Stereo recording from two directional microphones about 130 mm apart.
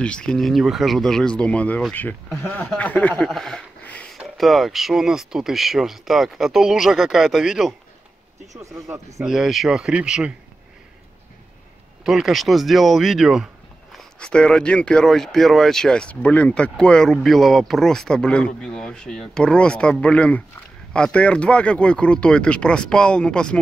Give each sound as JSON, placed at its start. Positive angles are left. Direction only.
{"t": 0.0, "sound": "speech", "side_deg": 10}
{"t": 3.3, "sound": "a sound", "side_deg": 5}
{"t": 4.2, "sound": "speech", "side_deg": 0}
{"t": 8.7, "sound": "speech", "side_deg": -25}
{"t": 9.2, "sound": "speech", "side_deg": -5}
{"t": 12.0, "sound": "speech", "side_deg": 0}
{"t": 13.9, "sound": "speech", "side_deg": 5}